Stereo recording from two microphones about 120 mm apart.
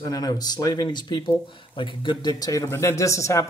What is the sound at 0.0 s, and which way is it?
A man's voice, 30° left (ahead or behind).